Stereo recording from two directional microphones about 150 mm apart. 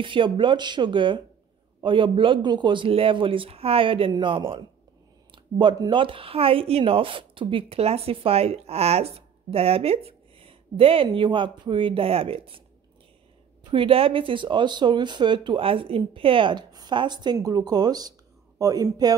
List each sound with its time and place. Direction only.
0.0 s speech: 35° right (ahead or behind)
13.7 s speech: 35° right (ahead or behind)